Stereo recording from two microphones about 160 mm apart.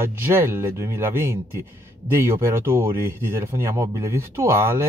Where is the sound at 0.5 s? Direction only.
15° right (ahead or behind).